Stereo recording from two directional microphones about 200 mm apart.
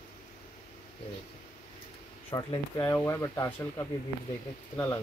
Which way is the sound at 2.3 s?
15° left (ahead or behind).